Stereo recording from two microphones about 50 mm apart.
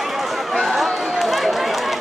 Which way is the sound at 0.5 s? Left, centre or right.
Centre.